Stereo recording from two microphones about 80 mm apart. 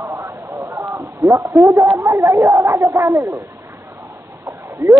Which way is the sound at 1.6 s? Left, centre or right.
Right.